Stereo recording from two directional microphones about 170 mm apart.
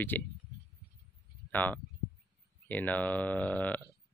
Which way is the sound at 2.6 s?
10° left (ahead or behind).